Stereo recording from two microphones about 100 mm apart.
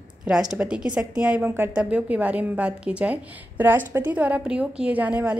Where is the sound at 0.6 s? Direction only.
10° right (ahead or behind).